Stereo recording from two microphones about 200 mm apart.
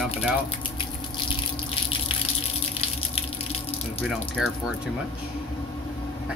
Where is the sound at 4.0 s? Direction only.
Centre (ahead or behind).